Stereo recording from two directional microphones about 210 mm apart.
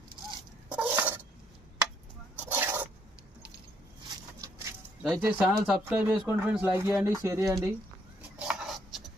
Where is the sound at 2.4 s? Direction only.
10° right (ahead or behind).